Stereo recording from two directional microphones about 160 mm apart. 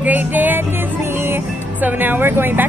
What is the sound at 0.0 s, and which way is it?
Music, 10° right (ahead or behind).